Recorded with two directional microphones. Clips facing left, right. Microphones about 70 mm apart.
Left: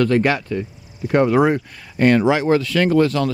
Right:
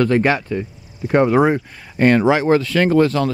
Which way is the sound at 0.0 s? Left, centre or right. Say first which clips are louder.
Right 1 dB; right.